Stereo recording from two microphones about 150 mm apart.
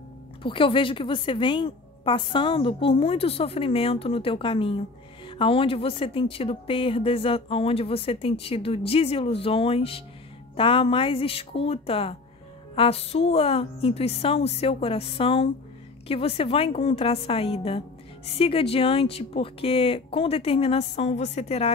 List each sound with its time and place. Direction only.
0.4 s a woman's voice: 35° left (ahead or behind)